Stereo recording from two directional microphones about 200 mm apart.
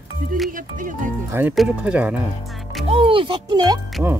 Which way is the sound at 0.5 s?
40° right (ahead or behind).